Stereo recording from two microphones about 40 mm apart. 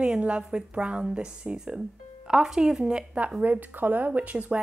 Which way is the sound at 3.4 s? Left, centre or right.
Right.